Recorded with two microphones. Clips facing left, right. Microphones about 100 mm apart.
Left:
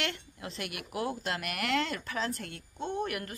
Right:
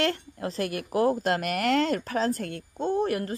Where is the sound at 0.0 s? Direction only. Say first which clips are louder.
Right 9 dB; 40° right (ahead or behind).